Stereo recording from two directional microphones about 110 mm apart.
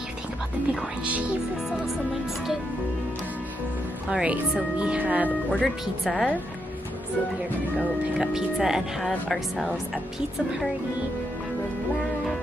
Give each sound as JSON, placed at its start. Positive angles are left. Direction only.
{"t": 1.0, "sound": "speech", "side_deg": -10}
{"t": 4.1, "sound": "speech", "side_deg": -10}
{"t": 5.5, "sound": "speech", "side_deg": 5}
{"t": 8.2, "sound": "speech", "side_deg": -5}